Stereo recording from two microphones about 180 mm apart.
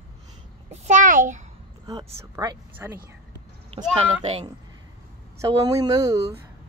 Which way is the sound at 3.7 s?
30° right (ahead or behind).